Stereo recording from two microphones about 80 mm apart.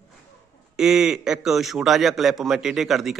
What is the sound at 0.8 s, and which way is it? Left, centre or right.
A man's voice, centre.